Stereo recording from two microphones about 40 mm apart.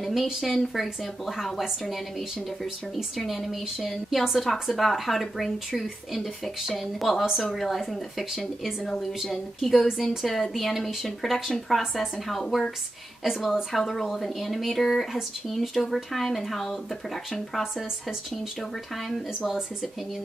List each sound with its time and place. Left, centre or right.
0.0 s a sound: centre
0.4 s speech: centre
8.8 s a woman's voice: centre
9.2 s speech: centre